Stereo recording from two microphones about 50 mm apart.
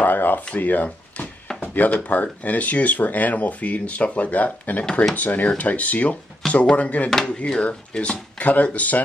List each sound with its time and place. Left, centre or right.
0.0 s speech: left